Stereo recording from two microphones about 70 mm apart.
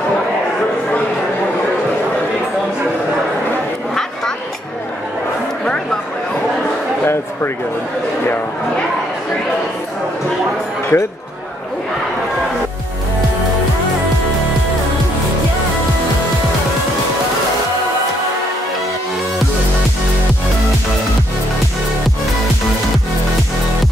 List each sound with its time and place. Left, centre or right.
10.9 s speech: left